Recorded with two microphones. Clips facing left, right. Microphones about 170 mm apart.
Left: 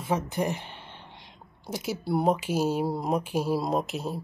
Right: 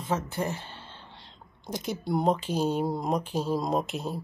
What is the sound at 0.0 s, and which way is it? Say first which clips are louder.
Speech: left 2 dB; 15° left (ahead or behind).